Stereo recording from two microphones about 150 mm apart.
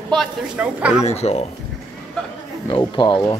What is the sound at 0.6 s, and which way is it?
Speech, 5° right (ahead or behind).